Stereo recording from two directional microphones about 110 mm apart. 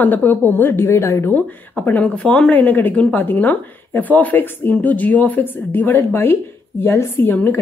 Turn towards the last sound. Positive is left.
turn(degrees=20)  # may be behind; listen again after turning